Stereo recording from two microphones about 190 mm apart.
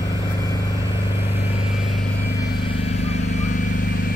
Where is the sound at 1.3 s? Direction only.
40° left (ahead or behind).